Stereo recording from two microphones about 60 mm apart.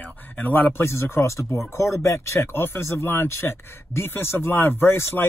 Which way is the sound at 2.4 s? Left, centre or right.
Left.